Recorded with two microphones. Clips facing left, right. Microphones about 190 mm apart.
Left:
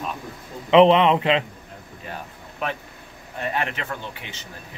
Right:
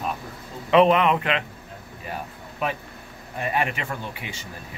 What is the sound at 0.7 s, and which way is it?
Speech, 25° left (ahead or behind).